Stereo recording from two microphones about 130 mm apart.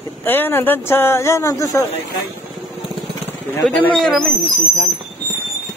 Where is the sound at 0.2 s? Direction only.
15° left (ahead or behind).